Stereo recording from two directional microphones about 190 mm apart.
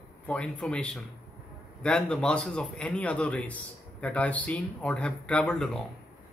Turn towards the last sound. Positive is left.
turn(degrees=5)  # may be behind; listen again after turning